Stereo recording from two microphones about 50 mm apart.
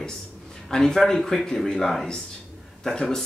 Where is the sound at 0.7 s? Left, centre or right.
Centre.